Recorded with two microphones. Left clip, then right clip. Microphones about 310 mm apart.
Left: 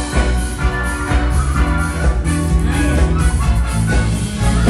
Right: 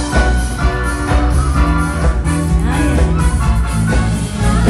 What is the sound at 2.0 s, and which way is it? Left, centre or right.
Music, centre.